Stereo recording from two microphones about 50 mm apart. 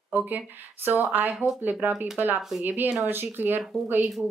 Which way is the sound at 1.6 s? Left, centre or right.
Right.